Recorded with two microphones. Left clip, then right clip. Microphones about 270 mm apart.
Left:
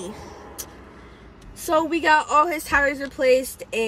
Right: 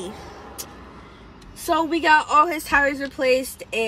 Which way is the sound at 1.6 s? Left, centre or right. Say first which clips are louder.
Even; centre.